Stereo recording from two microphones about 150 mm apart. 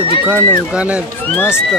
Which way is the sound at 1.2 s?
15° left (ahead or behind).